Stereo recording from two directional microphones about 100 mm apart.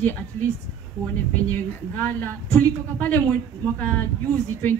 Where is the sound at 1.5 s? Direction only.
20° left (ahead or behind).